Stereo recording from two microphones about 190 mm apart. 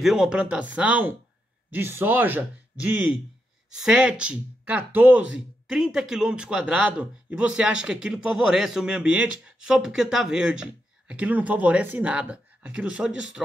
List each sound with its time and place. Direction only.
0.0 s speech: centre (ahead or behind)